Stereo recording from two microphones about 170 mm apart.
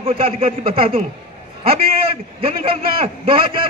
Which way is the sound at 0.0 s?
35° right (ahead or behind).